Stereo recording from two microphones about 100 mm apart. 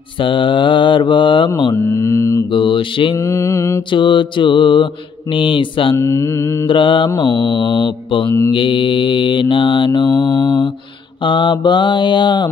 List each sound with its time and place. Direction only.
0.2 s mantra: 55° left (ahead or behind)
1.8 s mantra: 30° left (ahead or behind)
2.5 s mantra: 55° left (ahead or behind)
3.2 s mantra: 30° left (ahead or behind)
3.9 s mantra: 55° left (ahead or behind)
5.9 s mantra: 30° left (ahead or behind)
6.7 s mantra: 55° left (ahead or behind)